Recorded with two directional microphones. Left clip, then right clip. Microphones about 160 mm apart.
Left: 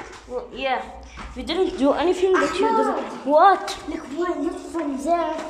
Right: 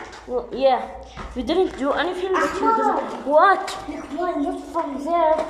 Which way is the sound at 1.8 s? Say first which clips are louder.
Left 3 dB; 10° left (ahead or behind).